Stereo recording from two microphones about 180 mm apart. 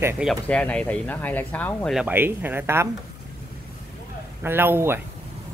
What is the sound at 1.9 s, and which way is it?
Speech, 10° right (ahead or behind).